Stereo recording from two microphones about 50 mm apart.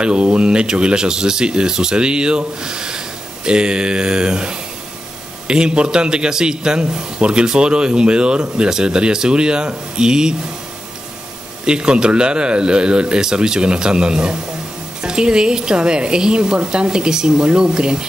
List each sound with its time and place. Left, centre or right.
0.0 s a man's voice: centre
11.6 s a man's voice: centre